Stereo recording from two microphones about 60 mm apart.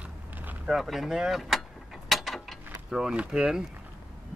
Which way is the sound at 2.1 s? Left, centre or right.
Centre.